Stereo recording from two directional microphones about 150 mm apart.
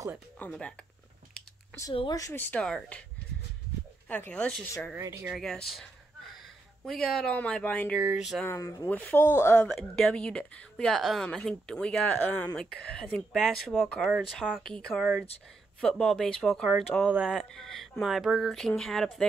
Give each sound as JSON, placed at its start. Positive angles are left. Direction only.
{"t": 0.4, "sound": "a woman's voice", "side_deg": 10}
{"t": 2.1, "sound": "a woman's voice", "side_deg": 20}
{"t": 4.1, "sound": "a woman's voice", "side_deg": 10}
{"t": 4.9, "sound": "speech", "side_deg": -15}
{"t": 5.3, "sound": "a woman's voice", "side_deg": 0}
{"t": 8.0, "sound": "speech", "side_deg": -5}
{"t": 8.5, "sound": "speech", "side_deg": 20}
{"t": 8.8, "sound": "a woman's voice", "side_deg": 10}
{"t": 9.7, "sound": "a woman's voice", "side_deg": 5}